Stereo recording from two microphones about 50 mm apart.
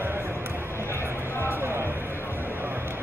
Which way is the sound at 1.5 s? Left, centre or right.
Right.